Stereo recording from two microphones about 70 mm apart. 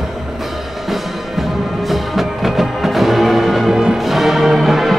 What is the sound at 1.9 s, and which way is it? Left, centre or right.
Music, centre.